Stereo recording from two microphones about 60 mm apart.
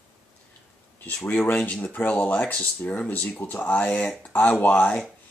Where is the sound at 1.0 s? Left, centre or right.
Left.